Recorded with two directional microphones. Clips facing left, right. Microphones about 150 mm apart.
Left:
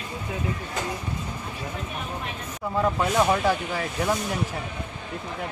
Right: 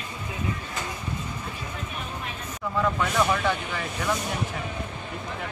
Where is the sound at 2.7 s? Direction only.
35° left (ahead or behind).